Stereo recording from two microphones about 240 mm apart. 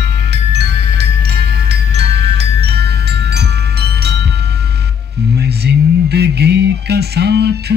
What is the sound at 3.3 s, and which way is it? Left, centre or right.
Wind chime, right.